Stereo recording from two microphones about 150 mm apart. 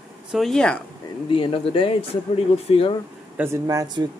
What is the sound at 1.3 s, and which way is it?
Speech, 35° left (ahead or behind).